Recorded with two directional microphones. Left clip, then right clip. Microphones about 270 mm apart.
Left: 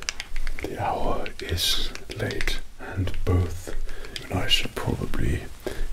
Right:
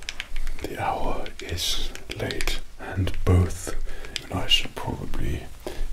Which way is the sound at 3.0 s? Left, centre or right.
Right.